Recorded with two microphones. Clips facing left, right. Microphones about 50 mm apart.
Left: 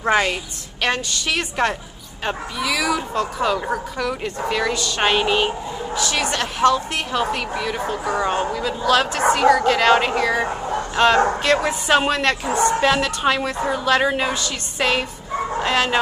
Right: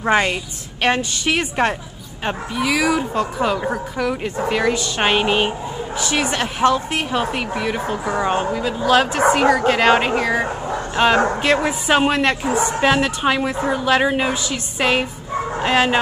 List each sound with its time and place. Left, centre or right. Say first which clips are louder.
0.1 s a woman's voice: right 1 dB; right